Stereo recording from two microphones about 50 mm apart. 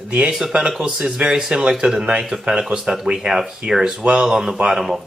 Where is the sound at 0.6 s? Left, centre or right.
Centre.